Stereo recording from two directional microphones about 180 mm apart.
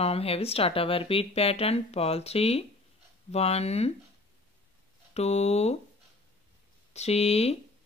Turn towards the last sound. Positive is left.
turn(degrees=35)  # may be behind; listen again after turning